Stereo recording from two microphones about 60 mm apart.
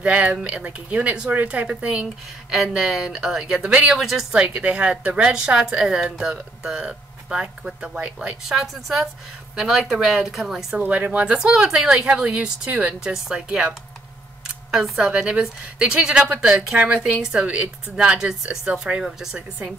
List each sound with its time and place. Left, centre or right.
0.0 s speech: right
2.5 s speech: centre
3.6 s speech: centre
3.9 s speech: centre
4.3 s speech: centre
8.5 s speech: centre
10.8 s speech: right
11.3 s speech: centre
18.7 s speech: right
19.0 s speech: centre